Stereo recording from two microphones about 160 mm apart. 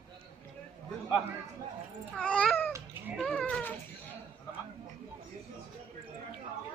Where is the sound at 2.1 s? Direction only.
5° left (ahead or behind).